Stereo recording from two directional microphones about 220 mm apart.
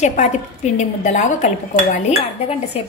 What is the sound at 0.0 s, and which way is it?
Speech, 35° left (ahead or behind).